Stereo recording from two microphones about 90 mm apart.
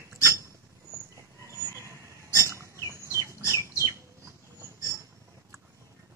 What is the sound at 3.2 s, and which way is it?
Bird, 35° right (ahead or behind).